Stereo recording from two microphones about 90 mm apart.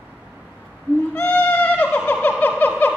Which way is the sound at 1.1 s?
20° left (ahead or behind).